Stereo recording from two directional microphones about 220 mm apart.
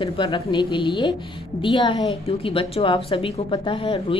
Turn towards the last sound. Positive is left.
turn(degrees=25)  # may be behind; listen again after turning